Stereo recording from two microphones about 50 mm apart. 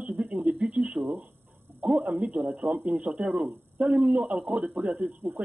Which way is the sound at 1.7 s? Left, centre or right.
Right.